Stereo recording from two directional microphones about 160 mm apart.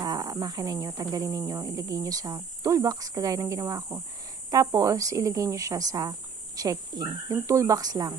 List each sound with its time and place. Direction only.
0.0 s speech: 25° right (ahead or behind)